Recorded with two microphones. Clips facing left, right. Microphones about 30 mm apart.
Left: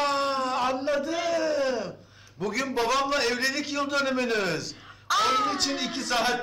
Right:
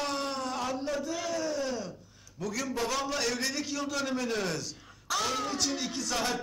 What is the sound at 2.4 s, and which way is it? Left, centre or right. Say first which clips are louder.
A man's voice: left 5 dB; left.